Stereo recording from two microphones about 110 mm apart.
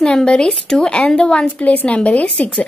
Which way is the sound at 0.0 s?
10° left (ahead or behind).